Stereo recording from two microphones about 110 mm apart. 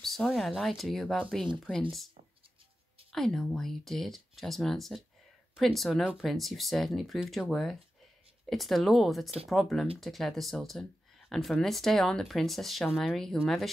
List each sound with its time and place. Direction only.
0.0 s speech: centre (ahead or behind)
3.1 s speech: 5° left (ahead or behind)